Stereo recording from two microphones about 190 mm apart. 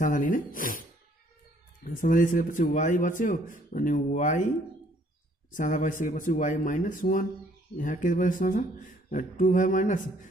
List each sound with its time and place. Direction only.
0.0 s a man's voice: 45° left (ahead or behind)
1.9 s a man's voice: 45° left (ahead or behind)
5.5 s a man's voice: 45° left (ahead or behind)